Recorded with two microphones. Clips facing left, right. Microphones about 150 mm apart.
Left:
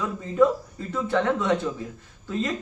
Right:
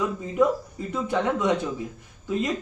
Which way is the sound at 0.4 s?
15° right (ahead or behind).